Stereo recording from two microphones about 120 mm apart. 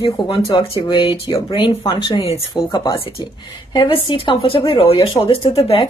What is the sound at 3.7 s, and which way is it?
A woman's voice, 45° left (ahead or behind).